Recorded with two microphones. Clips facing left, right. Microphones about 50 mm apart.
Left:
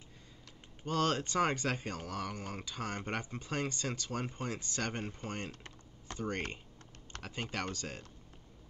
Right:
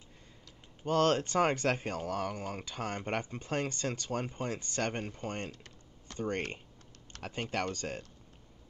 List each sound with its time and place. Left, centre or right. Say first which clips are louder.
0.8 s speech: right 5 dB; right
5.5 s typing: even; left
6.1 s speech: right 3 dB; right